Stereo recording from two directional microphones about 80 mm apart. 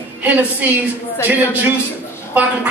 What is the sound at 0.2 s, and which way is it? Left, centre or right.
A woman's voice, centre.